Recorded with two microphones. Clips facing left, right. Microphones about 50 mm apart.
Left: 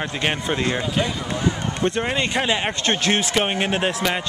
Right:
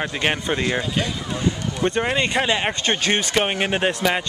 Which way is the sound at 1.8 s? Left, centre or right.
Centre.